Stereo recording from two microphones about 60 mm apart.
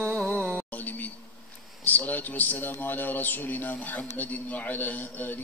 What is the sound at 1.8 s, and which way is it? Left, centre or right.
A man's voice, left.